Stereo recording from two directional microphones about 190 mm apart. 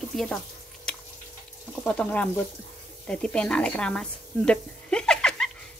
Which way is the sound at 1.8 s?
5° left (ahead or behind).